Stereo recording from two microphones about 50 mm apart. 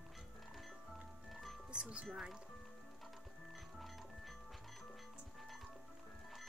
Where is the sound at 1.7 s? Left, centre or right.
Right.